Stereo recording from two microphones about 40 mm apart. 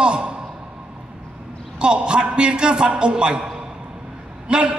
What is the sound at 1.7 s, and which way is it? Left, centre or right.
A man's voice, right.